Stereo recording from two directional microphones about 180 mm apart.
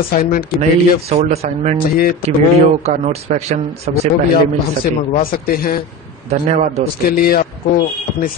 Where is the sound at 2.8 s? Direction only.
40° right (ahead or behind).